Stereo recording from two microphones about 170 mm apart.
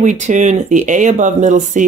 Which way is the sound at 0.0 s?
45° right (ahead or behind).